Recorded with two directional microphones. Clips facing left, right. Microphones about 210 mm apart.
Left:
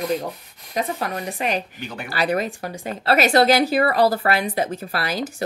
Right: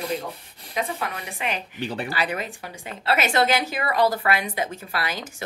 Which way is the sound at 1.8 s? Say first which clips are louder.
Right 4 dB; 30° right (ahead or behind).